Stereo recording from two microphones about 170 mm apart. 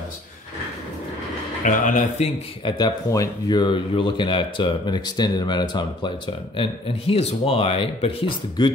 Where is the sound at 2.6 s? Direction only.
25° left (ahead or behind).